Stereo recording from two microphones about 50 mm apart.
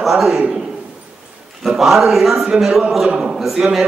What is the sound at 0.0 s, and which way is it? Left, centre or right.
Speech, centre.